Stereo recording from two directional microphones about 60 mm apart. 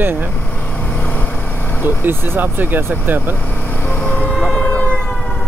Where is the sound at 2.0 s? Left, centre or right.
Right.